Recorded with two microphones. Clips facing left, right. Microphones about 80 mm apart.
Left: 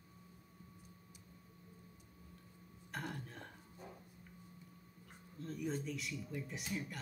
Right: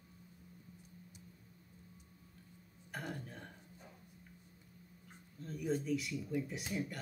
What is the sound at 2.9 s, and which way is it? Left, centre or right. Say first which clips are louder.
Burping: right 1 dB; centre.